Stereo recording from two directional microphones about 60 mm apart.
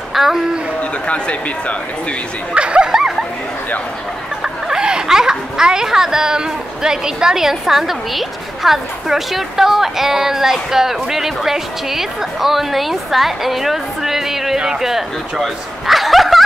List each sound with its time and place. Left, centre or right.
0.1 s speech: centre
1.0 s speech: centre
2.5 s speech: centre
2.9 s a sound: centre
4.4 s a child's voice: centre